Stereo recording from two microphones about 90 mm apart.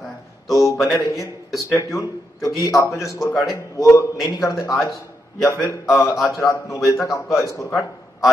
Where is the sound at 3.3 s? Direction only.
5° right (ahead or behind).